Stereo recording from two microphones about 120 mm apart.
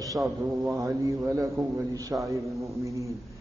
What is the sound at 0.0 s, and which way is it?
A man's voice, 30° right (ahead or behind).